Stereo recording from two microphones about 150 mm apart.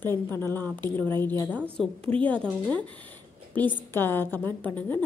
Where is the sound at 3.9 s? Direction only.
15° left (ahead or behind).